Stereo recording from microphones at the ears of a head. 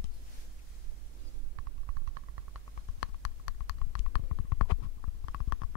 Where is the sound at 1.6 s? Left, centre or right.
Right.